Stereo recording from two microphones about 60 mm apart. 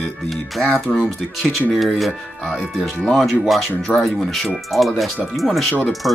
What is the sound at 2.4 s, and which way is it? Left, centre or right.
Speech, centre.